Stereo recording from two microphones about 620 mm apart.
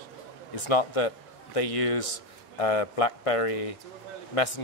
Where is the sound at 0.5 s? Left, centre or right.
Left.